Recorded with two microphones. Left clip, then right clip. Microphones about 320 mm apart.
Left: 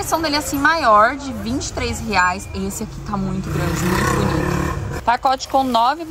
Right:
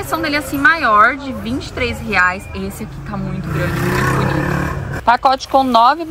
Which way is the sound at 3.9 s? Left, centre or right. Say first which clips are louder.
Right 1 dB; right.